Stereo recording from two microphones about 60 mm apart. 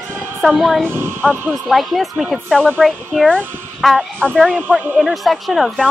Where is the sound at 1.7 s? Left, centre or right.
Centre.